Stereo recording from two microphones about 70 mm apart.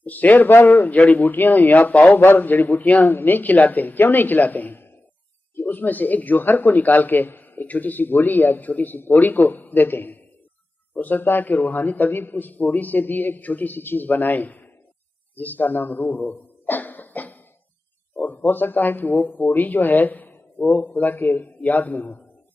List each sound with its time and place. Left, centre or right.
0.0 s a man's voice: left
15.3 s a sound: left
18.1 s a man's voice: left